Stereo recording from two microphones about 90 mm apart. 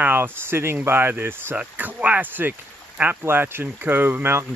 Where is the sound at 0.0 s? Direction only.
25° right (ahead or behind).